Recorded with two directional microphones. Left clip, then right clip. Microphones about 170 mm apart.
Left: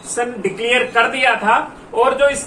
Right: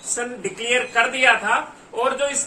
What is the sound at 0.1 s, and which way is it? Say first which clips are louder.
Speech: left 7 dB; 20° right (ahead or behind).